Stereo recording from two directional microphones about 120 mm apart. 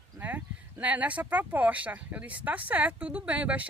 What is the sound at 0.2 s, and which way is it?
Speech, 15° right (ahead or behind).